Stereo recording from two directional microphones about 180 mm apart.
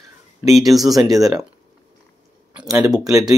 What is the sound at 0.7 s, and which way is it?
Speech, centre (ahead or behind).